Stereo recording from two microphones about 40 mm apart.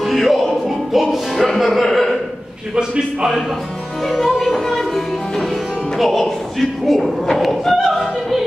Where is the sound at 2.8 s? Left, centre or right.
Right.